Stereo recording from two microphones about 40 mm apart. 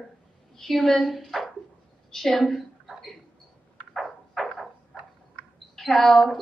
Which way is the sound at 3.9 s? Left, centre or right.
Centre.